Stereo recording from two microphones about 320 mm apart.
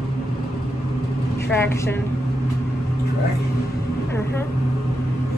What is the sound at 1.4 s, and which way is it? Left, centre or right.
Speech, centre.